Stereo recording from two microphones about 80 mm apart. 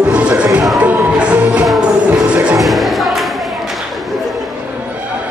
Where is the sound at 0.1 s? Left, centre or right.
Centre.